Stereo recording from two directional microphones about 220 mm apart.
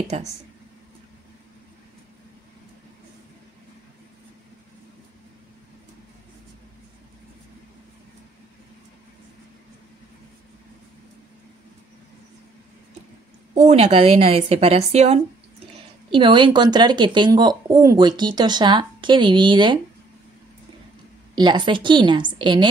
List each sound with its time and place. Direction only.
13.7 s speech: 30° right (ahead or behind)
21.4 s speech: 20° right (ahead or behind)